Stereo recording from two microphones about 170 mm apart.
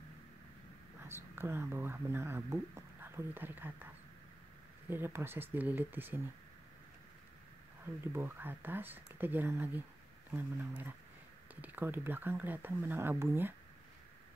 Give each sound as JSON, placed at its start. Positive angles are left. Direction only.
{"t": 1.0, "sound": "speech", "side_deg": -15}
{"t": 7.8, "sound": "speech", "side_deg": -15}